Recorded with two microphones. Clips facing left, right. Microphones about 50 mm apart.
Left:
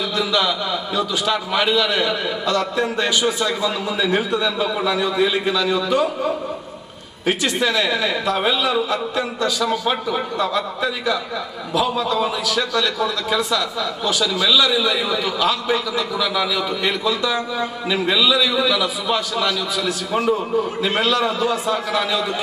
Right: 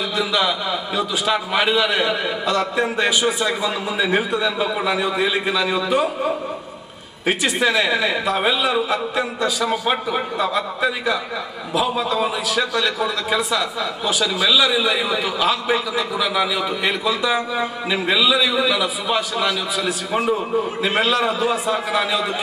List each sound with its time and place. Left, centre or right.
0.2 s a man's voice: centre